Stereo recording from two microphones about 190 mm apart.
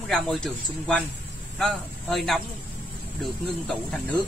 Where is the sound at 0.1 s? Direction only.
5° left (ahead or behind).